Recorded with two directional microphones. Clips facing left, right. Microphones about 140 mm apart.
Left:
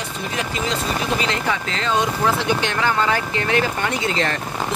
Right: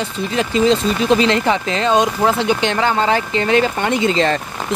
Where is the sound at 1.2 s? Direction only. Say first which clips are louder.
Right 7 dB; 20° right (ahead or behind).